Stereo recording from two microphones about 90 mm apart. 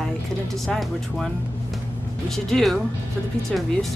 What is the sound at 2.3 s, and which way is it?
Speech, 5° left (ahead or behind).